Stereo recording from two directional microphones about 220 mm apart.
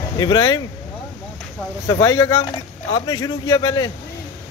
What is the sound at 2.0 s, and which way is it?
Speech, 15° left (ahead or behind).